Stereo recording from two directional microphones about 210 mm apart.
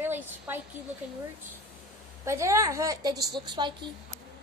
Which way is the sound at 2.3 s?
15° right (ahead or behind).